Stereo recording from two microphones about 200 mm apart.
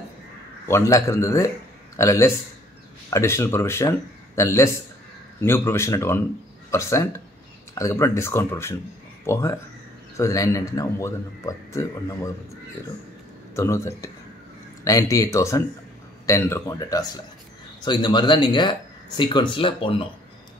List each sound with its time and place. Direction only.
0.7 s speech: 15° left (ahead or behind)